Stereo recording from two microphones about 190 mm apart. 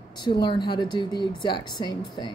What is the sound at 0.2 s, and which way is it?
A woman's voice, 25° left (ahead or behind).